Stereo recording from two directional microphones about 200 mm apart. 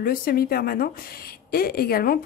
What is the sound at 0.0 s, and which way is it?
Speech, 50° left (ahead or behind).